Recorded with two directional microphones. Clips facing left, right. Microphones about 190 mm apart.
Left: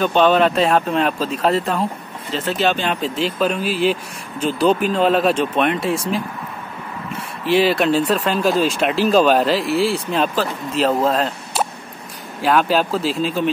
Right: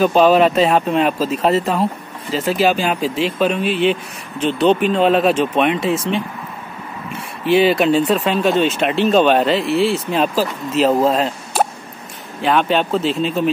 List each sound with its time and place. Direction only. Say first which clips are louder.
0.0 s speech: right 3 dB; 5° right (ahead or behind)
7.6 s speech: right 2 dB; centre (ahead or behind)
11.6 s a sound: right 4 dB; 50° right (ahead or behind)
12.4 s speech: even; 5° left (ahead or behind)